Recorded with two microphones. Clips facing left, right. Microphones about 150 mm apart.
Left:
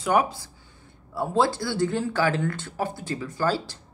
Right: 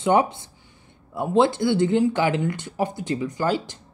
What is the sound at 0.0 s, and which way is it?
Speech, 25° right (ahead or behind).